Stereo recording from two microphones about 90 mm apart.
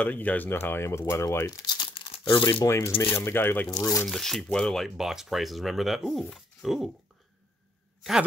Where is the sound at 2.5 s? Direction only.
35° left (ahead or behind).